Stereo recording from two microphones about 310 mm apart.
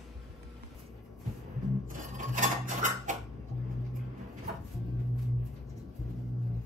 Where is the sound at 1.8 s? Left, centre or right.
Right.